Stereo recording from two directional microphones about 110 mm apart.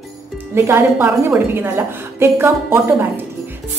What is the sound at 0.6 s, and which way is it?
A woman's voice, 20° right (ahead or behind).